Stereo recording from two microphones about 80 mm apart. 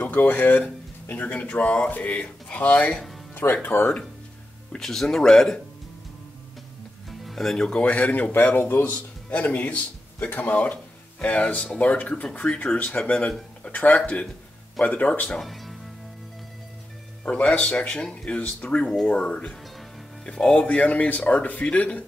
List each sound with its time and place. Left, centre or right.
0.0 s speech: left
4.7 s speech: centre
7.1 s speech: centre
15.3 s speech: centre
17.2 s speech: centre